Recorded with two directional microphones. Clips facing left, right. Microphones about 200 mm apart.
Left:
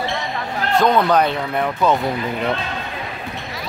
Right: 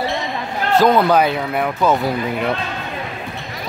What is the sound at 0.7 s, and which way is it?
Speech, 5° right (ahead or behind).